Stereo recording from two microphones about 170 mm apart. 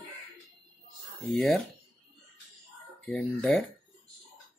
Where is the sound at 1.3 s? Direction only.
Centre (ahead or behind).